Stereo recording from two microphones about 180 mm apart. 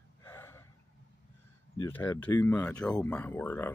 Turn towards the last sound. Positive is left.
turn(degrees=10)  # may be behind; listen again after turning